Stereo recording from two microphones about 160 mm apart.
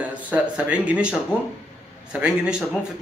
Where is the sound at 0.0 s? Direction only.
10° right (ahead or behind).